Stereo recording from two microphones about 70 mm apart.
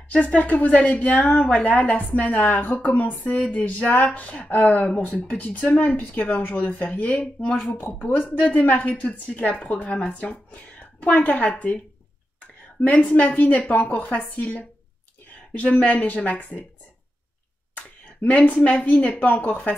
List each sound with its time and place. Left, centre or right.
0.1 s a woman's voice: centre
7.7 s a woman's voice: left
10.3 s whispering: left
11.1 s a woman's voice: centre
12.8 s a woman's voice: left
18.2 s a woman's voice: left